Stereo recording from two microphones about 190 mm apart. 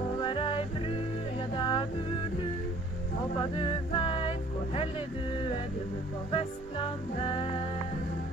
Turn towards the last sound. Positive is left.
turn(degrees=30)  # may be behind; listen again after turning